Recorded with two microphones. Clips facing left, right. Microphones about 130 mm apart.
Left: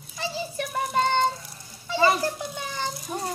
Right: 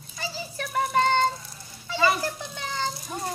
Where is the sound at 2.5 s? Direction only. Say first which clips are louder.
Right 1 dB; 15° left (ahead or behind).